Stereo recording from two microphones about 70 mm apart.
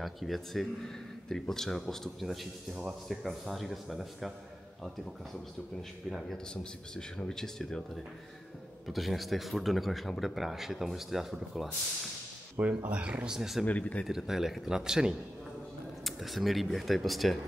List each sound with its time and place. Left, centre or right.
0.0 s a man's voice: centre
2.7 s speech: centre
3.1 s a man's voice: centre
5.8 s a man's voice: centre
12.5 s speech: right; by 13.7 s centre
13.7 s speech: left
14.0 s a man's voice: centre